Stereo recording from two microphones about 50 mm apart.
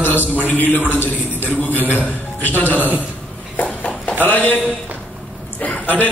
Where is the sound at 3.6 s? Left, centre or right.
Left.